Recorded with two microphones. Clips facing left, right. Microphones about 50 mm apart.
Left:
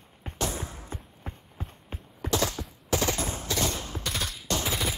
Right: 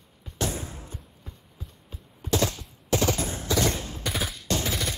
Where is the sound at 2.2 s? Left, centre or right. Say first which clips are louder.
Right 2 dB; left.